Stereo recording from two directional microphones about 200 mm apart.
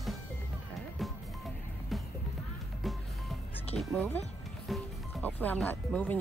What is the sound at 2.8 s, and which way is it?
Music, centre (ahead or behind).